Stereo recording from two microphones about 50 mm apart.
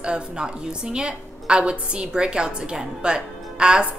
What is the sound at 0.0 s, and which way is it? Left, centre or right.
A woman's voice, centre.